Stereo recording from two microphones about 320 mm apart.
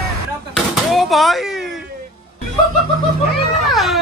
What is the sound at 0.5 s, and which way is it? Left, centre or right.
Gunshot, centre.